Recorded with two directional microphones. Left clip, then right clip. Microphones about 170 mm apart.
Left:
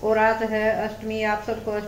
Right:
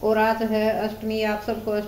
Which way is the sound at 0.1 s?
20° right (ahead or behind).